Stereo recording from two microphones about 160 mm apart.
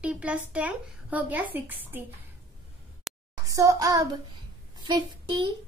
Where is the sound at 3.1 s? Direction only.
Centre (ahead or behind).